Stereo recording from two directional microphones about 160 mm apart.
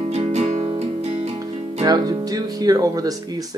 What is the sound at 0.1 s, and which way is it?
Music, 40° right (ahead or behind).